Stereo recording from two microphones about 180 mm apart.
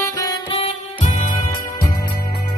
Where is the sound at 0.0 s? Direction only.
20° left (ahead or behind).